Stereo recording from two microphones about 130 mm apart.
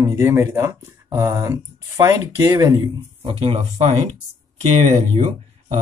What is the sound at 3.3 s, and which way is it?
Speech, 50° right (ahead or behind).